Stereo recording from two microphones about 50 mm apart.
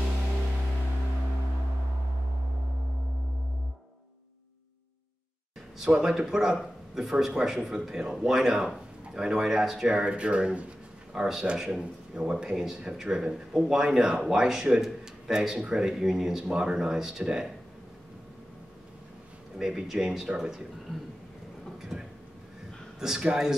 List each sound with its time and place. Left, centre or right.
5.9 s speech: centre
11.1 s speech: centre
19.6 s speech: centre
21.9 s speech: centre